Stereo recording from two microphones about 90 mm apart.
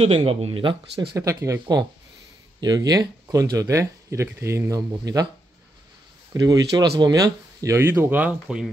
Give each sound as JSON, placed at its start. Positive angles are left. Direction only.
{"t": 0.0, "sound": "speech", "side_deg": -90}
{"t": 1.1, "sound": "speech", "side_deg": -35}
{"t": 6.3, "sound": "speech", "side_deg": -45}
{"t": 8.2, "sound": "speech", "side_deg": -10}